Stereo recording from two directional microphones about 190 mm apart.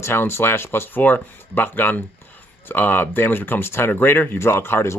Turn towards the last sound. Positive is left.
turn(degrees=15)  # may be behind; listen again after turning